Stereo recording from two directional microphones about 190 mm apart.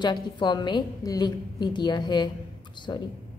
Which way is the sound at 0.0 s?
25° left (ahead or behind).